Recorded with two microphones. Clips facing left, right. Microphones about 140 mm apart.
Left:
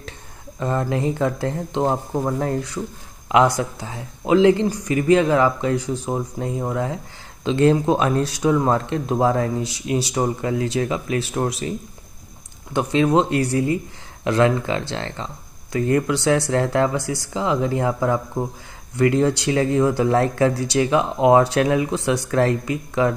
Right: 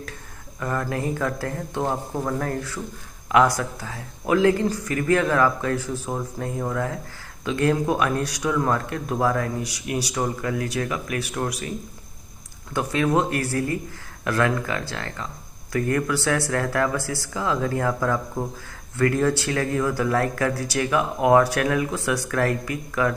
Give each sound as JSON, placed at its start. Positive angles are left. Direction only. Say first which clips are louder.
{"t": 0.6, "sound": "speech", "louder": "left 4 dB", "side_deg": 25}
{"t": 12.7, "sound": "speech", "louder": "left 4 dB", "side_deg": 25}